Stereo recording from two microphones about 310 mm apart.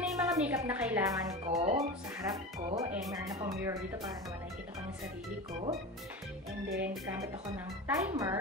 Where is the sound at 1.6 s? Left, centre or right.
Centre.